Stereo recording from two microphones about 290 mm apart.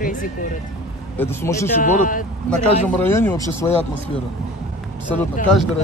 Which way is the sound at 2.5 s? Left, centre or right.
Centre.